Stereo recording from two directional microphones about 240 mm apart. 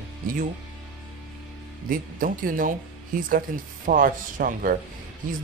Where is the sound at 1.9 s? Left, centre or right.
Right.